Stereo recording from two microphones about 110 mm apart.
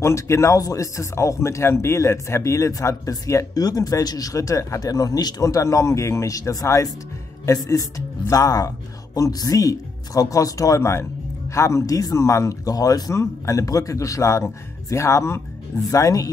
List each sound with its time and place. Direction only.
0.0 s speech: 25° left (ahead or behind)